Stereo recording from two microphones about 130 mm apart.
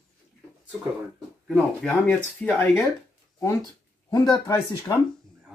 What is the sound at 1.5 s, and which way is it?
Speech, 5° left (ahead or behind).